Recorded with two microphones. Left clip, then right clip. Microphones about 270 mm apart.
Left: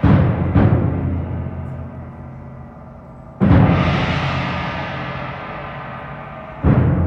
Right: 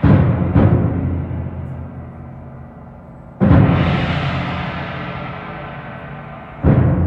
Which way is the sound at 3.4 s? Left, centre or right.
Centre.